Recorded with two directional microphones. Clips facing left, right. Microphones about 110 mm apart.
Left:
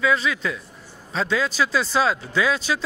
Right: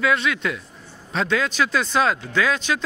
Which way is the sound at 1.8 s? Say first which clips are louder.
Right 1 dB; 5° left (ahead or behind).